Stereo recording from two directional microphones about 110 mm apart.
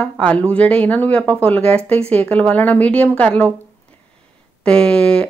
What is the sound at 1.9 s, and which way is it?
Speech, 65° right (ahead or behind).